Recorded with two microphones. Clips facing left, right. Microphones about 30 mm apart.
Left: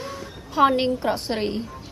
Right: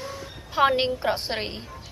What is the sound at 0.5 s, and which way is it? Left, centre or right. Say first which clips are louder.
A woman's voice: left 2 dB; centre.